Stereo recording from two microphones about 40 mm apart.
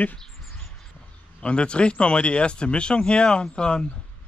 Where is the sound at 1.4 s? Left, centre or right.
Left.